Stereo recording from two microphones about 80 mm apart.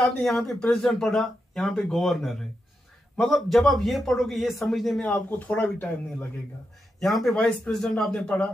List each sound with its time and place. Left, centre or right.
0.0 s speech: centre
5.0 s speech: centre
7.0 s a man's voice: centre